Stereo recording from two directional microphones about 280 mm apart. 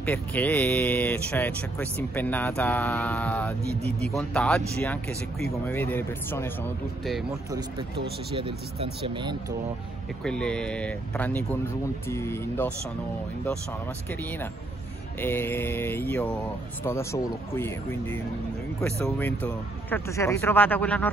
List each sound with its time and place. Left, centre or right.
0.0 s speech: centre
8.3 s speech: centre
10.2 s speech: centre
15.1 s speech: centre